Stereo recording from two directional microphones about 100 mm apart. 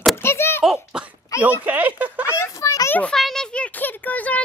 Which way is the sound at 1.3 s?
35° left (ahead or behind).